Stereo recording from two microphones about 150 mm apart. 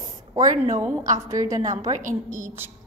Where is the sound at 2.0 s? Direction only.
60° right (ahead or behind).